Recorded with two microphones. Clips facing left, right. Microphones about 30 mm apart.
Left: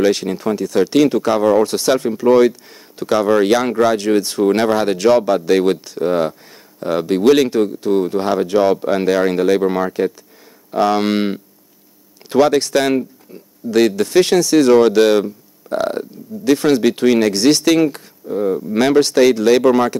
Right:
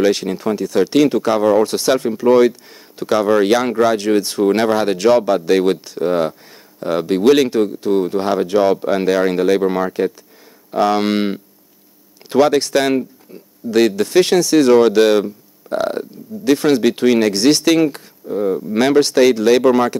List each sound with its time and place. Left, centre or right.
0.0 s speech: centre
18.2 s speech: centre